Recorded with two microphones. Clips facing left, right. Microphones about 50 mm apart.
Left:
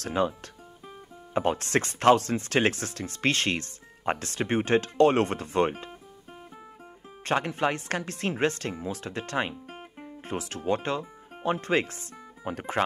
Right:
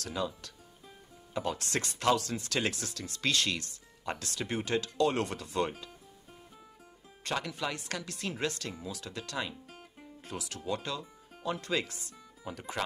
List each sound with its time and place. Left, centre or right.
0.0 s speech: left
7.2 s speech: left